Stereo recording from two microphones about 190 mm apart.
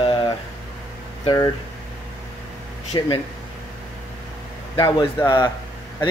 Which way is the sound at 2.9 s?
25° left (ahead or behind).